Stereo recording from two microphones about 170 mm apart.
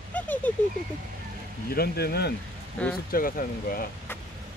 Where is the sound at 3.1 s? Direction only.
55° left (ahead or behind).